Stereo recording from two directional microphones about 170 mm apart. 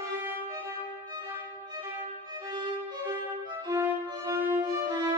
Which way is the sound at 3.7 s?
20° right (ahead or behind).